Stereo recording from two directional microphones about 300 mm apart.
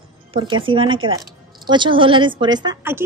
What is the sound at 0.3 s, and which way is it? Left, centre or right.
A woman's voice, centre.